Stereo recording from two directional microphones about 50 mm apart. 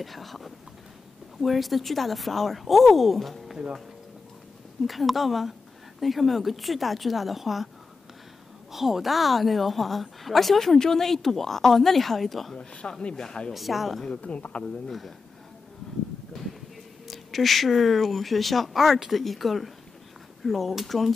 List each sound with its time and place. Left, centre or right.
0.0 s speech: centre
4.8 s speech: centre
8.7 s speech: centre
13.1 s speech: centre
13.5 s speech: centre
14.0 s speech: left
14.9 s speech: centre
17.1 s speech: centre